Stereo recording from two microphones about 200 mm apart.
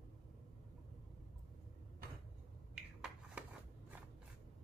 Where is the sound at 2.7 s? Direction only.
5° right (ahead or behind).